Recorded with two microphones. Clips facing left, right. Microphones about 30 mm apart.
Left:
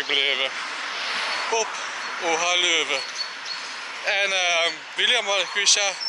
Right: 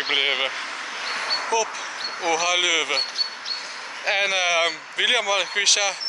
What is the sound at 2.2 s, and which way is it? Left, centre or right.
Speech, centre.